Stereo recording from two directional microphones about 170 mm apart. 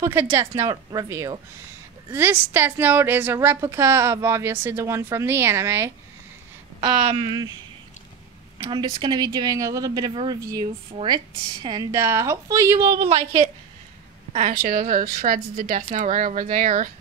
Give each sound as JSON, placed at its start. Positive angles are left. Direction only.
{"t": 0.0, "sound": "a woman's voice", "side_deg": -15}
{"t": 6.8, "sound": "speech", "side_deg": -30}
{"t": 8.6, "sound": "a woman's voice", "side_deg": -25}
{"t": 13.0, "sound": "a woman's voice", "side_deg": -40}
{"t": 14.3, "sound": "a woman's voice", "side_deg": -50}